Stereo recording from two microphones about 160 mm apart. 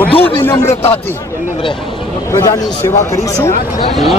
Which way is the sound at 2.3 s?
15° left (ahead or behind).